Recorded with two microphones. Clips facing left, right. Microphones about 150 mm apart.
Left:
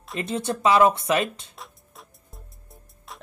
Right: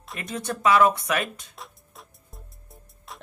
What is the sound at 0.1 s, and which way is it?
Speech, 25° left (ahead or behind).